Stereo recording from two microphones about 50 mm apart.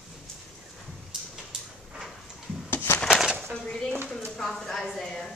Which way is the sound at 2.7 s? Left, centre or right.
Left.